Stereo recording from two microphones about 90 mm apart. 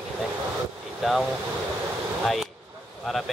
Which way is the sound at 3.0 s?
Centre (ahead or behind).